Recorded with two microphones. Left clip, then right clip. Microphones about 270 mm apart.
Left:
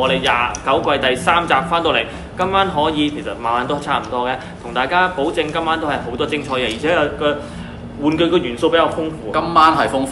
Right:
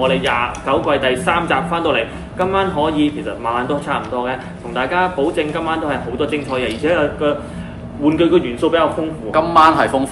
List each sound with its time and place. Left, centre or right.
0.0 s a man's voice: centre